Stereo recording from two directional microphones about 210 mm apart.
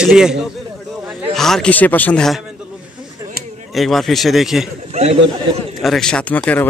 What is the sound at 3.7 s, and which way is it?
Speech, centre (ahead or behind).